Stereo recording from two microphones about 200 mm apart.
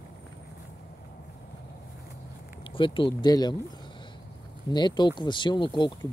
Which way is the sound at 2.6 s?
25° left (ahead or behind).